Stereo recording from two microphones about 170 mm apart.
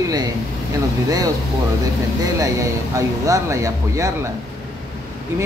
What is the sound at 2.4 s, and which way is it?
Speech, 20° right (ahead or behind).